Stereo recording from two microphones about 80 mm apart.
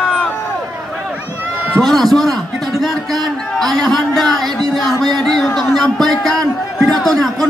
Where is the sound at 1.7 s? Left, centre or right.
Centre.